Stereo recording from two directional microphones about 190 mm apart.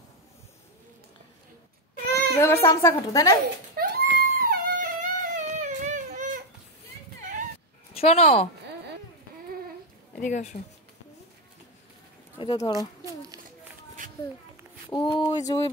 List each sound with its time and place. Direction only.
2.4 s a woman's voice: 15° left (ahead or behind)
3.7 s a sound: 50° right (ahead or behind)
7.9 s a woman's voice: 30° left (ahead or behind)
10.1 s speech: 40° left (ahead or behind)
12.4 s speech: 20° left (ahead or behind)
14.9 s speech: 25° left (ahead or behind)